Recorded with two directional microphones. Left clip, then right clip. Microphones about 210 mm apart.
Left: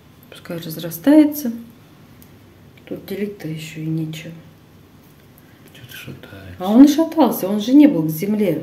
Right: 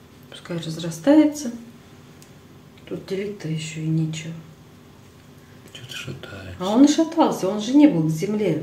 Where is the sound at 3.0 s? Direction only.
45° left (ahead or behind).